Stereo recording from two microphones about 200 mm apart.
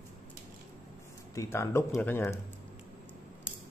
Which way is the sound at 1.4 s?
15° left (ahead or behind).